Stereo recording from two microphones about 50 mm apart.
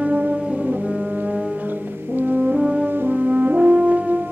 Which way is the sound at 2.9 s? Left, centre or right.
Right.